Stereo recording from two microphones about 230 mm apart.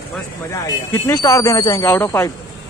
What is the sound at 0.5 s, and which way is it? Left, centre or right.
Speech, centre.